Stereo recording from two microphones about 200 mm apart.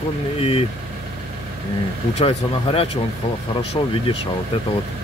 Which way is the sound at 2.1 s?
30° left (ahead or behind).